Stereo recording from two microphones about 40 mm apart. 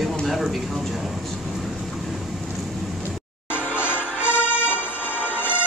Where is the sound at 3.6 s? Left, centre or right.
Left.